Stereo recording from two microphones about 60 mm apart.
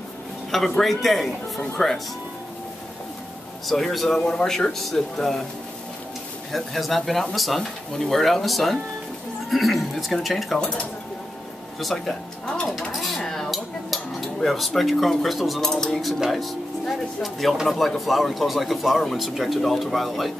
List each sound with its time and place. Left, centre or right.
0.5 s speech: centre
3.6 s a man's voice: centre
6.5 s speech: centre
10.6 s speech: centre
11.8 s speech: centre
12.9 s dishes: centre
17.2 s speech: centre